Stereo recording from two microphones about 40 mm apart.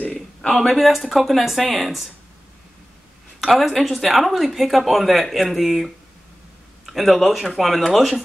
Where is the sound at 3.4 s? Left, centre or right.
Centre.